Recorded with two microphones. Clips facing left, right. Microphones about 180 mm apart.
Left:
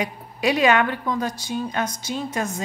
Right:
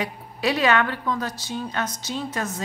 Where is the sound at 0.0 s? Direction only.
15° left (ahead or behind).